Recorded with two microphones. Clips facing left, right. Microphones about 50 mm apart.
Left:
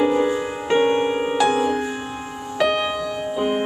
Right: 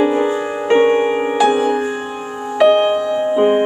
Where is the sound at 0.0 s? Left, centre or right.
Right.